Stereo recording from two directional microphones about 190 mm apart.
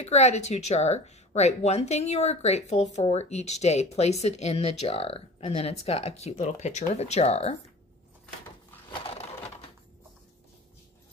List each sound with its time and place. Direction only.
0.0 s speech: 35° left (ahead or behind)
9.0 s crushing: 30° left (ahead or behind)